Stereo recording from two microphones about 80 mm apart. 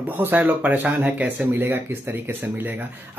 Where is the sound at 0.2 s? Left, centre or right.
Right.